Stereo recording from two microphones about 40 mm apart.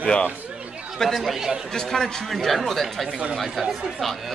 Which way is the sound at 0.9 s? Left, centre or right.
Centre.